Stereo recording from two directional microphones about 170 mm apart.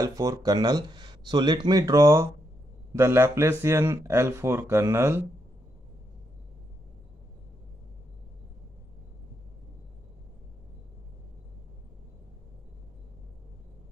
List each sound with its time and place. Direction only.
0.0 s speech: 20° right (ahead or behind)